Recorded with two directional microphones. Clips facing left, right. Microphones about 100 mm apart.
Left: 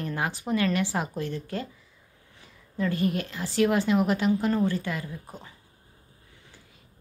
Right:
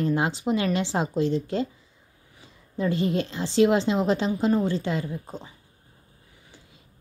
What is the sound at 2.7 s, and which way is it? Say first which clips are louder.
A woman's voice: right 2 dB; 25° right (ahead or behind).